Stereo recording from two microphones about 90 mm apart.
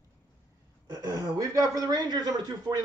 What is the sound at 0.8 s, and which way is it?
Speech, 45° right (ahead or behind).